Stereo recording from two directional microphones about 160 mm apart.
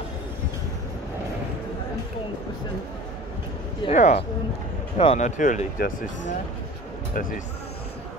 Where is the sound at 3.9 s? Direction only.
45° left (ahead or behind); by 7.4 s 60° left (ahead or behind).